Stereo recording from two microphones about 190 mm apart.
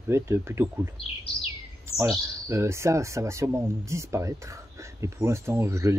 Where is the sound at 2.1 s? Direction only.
15° right (ahead or behind).